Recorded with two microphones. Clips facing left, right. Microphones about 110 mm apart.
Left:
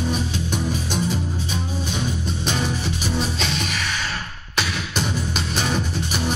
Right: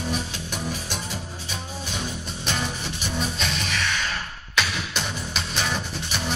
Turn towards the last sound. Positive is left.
turn(degrees=45)  # may be behind; listen again after turning